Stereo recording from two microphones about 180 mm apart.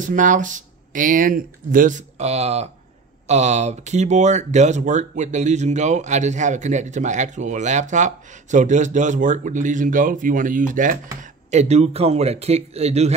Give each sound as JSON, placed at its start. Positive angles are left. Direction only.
{"t": 0.0, "sound": "speech", "side_deg": -45}
{"t": 11.5, "sound": "speech", "side_deg": -35}